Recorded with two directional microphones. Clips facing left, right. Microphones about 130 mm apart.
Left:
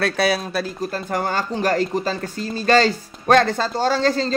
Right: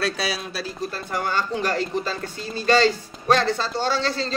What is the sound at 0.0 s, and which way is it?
Speech, 55° left (ahead or behind).